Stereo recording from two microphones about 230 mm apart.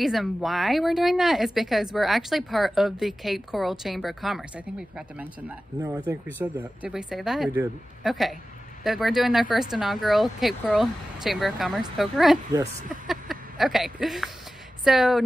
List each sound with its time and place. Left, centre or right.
0.0 s speech: centre
5.8 s speech: centre